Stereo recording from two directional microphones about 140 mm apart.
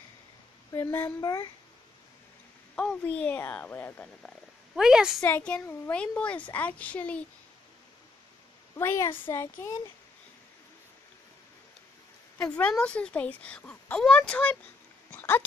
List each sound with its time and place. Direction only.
1.2 s speech: 25° left (ahead or behind)
2.7 s speech: 10° left (ahead or behind)
4.7 s a woman's voice: 5° right (ahead or behind)
5.2 s speech: 10° left (ahead or behind)
8.7 s speech: 20° left (ahead or behind)
12.4 s speech: 10° left (ahead or behind)